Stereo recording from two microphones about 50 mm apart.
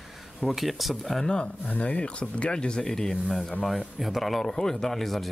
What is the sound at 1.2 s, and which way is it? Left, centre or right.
Speech, centre.